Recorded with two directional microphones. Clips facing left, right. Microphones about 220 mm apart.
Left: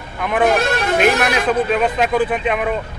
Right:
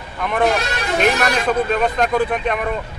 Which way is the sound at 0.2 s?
5° left (ahead or behind).